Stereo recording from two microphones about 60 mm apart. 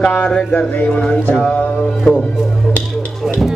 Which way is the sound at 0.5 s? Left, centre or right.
Left.